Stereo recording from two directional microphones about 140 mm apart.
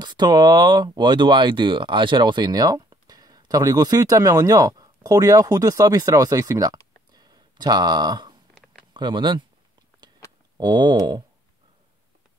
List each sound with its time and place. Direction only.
0.0 s speech: 30° right (ahead or behind)
7.1 s a sound: 30° right (ahead or behind)
8.9 s speech: 35° right (ahead or behind)
10.6 s speech: 30° right (ahead or behind)